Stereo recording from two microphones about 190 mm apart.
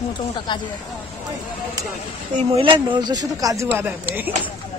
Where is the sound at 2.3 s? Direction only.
30° right (ahead or behind); by 4.3 s 10° right (ahead or behind).